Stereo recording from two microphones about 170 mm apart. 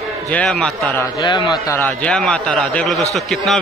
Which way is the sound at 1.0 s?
25° left (ahead or behind).